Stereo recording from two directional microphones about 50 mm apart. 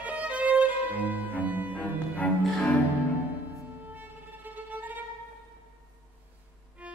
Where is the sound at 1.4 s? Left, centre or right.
Right.